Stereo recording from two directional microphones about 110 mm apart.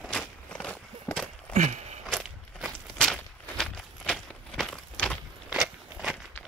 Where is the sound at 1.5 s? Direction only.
90° right.